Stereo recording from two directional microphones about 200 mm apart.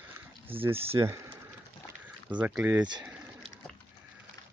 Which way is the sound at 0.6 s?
10° right (ahead or behind).